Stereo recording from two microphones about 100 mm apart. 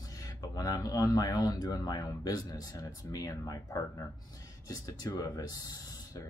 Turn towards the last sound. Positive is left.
turn(degrees=35)  # may be behind; listen again after turning